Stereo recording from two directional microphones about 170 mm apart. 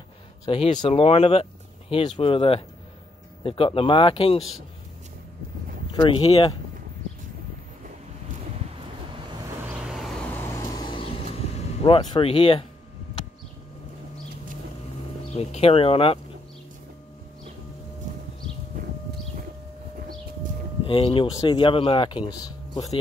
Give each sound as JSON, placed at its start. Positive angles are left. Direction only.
{"t": 0.5, "sound": "speech", "side_deg": 30}
{"t": 5.9, "sound": "speech", "side_deg": 30}
{"t": 9.7, "sound": "vehicle", "side_deg": -5}
{"t": 10.3, "sound": "vehicle", "side_deg": 15}
{"t": 10.8, "sound": "vehicle", "side_deg": 30}
{"t": 15.3, "sound": "speech", "side_deg": 35}
{"t": 20.8, "sound": "speech", "side_deg": 30}